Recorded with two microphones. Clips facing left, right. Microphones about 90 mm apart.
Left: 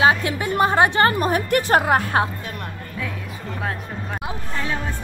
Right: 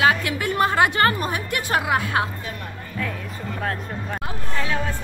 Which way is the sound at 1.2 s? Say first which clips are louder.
Left 6 dB; 45° left (ahead or behind).